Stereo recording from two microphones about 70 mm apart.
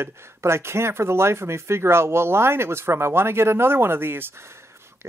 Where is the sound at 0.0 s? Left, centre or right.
Right.